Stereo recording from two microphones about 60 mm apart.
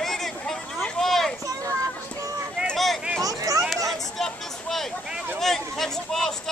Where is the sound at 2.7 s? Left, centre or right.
Centre.